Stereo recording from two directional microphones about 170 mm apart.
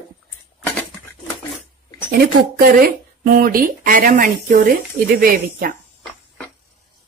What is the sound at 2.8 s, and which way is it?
Speech, 55° right (ahead or behind).